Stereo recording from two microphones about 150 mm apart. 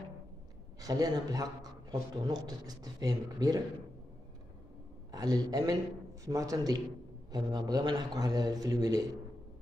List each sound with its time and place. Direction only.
0.7 s a man's voice: 25° right (ahead or behind)
5.1 s a man's voice: 25° right (ahead or behind)